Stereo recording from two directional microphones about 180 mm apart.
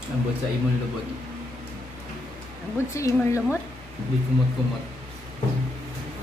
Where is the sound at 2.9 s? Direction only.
15° left (ahead or behind).